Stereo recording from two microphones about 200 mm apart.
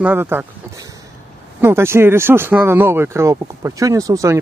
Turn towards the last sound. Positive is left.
turn(degrees=-15)  # may be behind; listen again after turning